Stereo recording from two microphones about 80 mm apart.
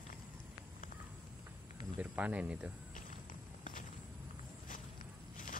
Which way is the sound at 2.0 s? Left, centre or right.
Centre.